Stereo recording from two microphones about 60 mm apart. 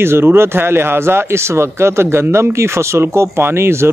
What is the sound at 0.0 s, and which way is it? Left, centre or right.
Speech, right.